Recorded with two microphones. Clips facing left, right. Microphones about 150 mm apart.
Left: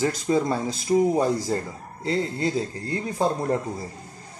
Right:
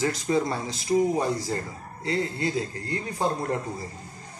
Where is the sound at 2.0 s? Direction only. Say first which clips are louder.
Left 2 dB; 35° left (ahead or behind).